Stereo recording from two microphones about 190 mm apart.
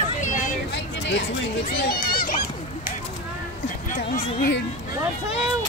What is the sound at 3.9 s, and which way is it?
Speech, 50° left (ahead or behind).